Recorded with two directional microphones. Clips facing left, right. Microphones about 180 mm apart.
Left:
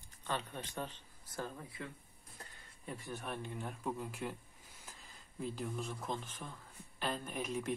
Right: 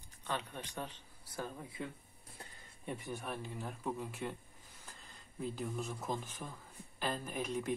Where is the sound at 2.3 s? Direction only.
20° right (ahead or behind).